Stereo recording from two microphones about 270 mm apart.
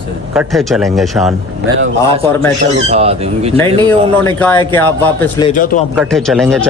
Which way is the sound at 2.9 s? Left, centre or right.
Right.